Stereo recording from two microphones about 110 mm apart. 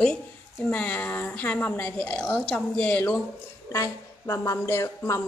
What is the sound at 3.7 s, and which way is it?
Speech, 30° left (ahead or behind).